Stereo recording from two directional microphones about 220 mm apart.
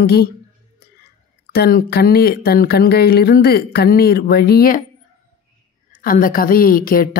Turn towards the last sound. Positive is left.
turn(degrees=40)  # may be behind; listen again after turning